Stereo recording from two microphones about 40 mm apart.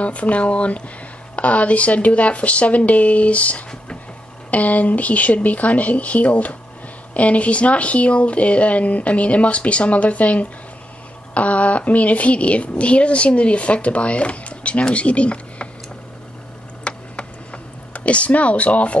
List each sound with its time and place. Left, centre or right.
0.0 s speech: left
16.8 s typing: left